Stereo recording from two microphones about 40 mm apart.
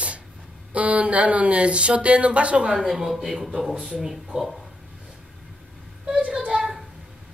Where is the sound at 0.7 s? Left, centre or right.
Right.